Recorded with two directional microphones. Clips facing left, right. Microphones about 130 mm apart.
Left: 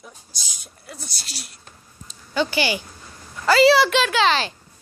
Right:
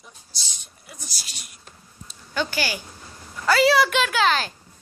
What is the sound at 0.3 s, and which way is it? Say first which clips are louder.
Speech: left 1 dB; 15° left (ahead or behind).